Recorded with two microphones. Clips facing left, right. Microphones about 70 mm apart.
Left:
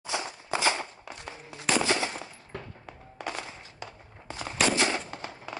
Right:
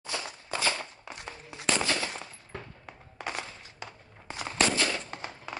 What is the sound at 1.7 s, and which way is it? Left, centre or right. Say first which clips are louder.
Machine gun: left 3 dB; left.